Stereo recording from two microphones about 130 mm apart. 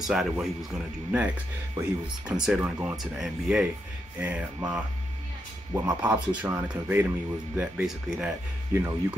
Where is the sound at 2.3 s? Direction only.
5° right (ahead or behind).